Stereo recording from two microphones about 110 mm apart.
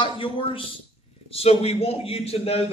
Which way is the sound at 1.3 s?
65° left (ahead or behind).